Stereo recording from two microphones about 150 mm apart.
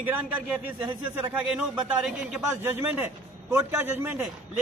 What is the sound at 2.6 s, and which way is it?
A man's voice, 15° right (ahead or behind).